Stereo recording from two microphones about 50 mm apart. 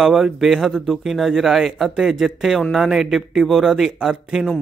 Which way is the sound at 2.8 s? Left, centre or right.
Centre.